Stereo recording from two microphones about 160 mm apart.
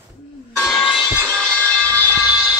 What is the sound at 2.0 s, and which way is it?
Vehicle, 10° right (ahead or behind).